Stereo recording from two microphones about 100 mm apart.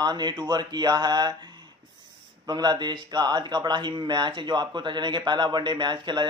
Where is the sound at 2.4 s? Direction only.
45° right (ahead or behind).